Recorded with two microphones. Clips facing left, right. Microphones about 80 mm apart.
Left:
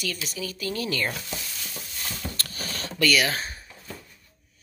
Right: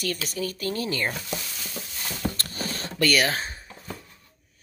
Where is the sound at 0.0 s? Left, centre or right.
Right.